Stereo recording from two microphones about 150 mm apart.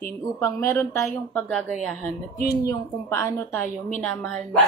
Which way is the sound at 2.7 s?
20° left (ahead or behind).